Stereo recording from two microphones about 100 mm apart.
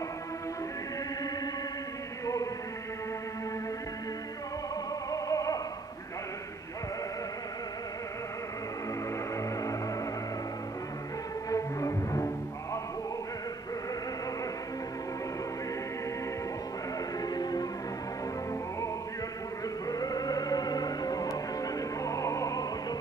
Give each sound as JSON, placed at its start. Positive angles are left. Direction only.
{"t": 5.1, "sound": "music", "side_deg": 35}
{"t": 11.5, "sound": "music", "side_deg": 35}
{"t": 17.2, "sound": "music", "side_deg": 40}
{"t": 19.9, "sound": "music", "side_deg": 40}